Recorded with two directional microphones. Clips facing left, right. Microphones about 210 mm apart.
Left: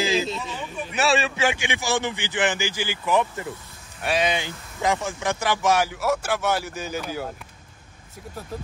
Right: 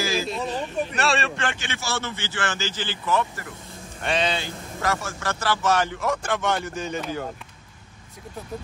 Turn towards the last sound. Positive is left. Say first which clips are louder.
# right 1 dB
turn(degrees=5)  # may be behind; listen again after turning